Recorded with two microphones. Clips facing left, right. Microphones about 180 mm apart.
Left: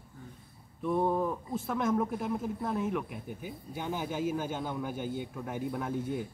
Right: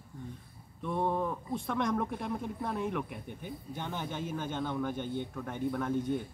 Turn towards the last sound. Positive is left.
turn(degrees=10)  # may be behind; listen again after turning